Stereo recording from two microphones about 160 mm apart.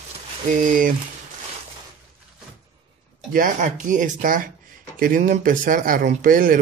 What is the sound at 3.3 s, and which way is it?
Music, 55° right (ahead or behind).